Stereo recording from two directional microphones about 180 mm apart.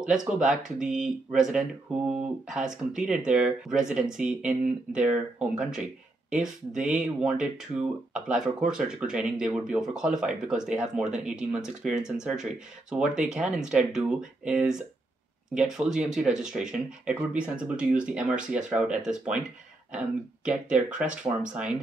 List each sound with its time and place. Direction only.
0.4 s speech: 5° right (ahead or behind)